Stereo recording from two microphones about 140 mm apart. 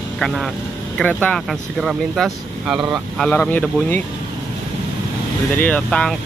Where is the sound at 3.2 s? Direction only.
5° left (ahead or behind).